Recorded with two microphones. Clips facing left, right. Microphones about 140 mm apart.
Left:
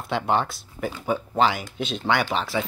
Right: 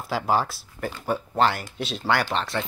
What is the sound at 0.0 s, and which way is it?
Speech, centre (ahead or behind).